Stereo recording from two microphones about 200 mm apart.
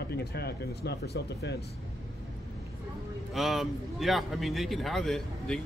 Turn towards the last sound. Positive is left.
turn(degrees=0)  # may be behind; listen again after turning